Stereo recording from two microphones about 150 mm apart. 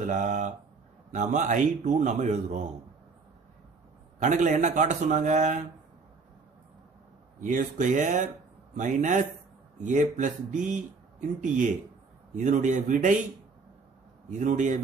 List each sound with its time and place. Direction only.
0.0 s speech: 55° right (ahead or behind)
4.2 s speech: 55° right (ahead or behind)
7.3 s speech: 60° right (ahead or behind)
14.4 s speech: 55° right (ahead or behind)